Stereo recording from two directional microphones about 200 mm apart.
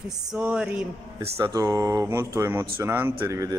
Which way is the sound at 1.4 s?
15° right (ahead or behind).